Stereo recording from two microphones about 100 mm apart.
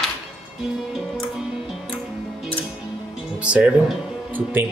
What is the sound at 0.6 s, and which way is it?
Music, 5° right (ahead or behind).